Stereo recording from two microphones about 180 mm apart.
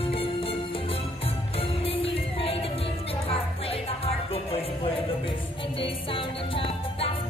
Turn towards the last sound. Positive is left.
turn(degrees=30)  # may be behind; listen again after turning